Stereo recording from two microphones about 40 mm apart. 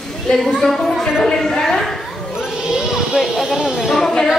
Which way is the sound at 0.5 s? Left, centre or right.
Centre.